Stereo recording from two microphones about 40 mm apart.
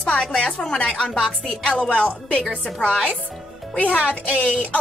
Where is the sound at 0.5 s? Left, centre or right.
Left.